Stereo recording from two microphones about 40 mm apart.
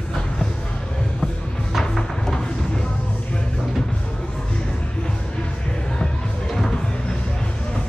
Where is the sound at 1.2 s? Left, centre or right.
Centre.